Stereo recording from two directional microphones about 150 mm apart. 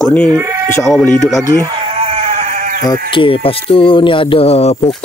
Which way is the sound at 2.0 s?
45° right (ahead or behind).